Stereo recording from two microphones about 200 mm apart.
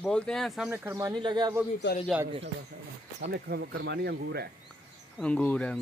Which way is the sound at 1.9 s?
50° left (ahead or behind).